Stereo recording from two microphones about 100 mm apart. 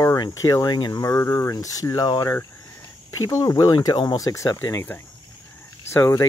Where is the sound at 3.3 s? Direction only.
35° left (ahead or behind).